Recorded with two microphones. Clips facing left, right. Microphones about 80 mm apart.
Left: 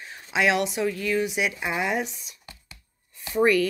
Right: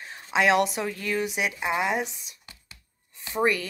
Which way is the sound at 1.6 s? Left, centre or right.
Right.